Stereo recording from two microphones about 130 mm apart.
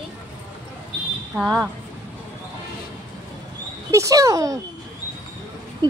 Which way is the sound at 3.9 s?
25° right (ahead or behind).